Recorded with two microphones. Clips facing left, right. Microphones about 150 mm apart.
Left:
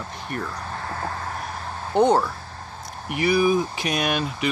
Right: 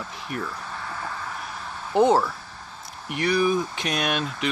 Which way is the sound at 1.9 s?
Centre (ahead or behind).